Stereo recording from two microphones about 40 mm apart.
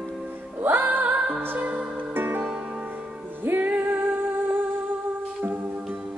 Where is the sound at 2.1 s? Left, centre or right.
Right.